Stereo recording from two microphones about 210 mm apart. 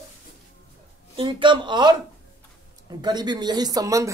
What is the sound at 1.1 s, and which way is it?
Speech, 25° right (ahead or behind).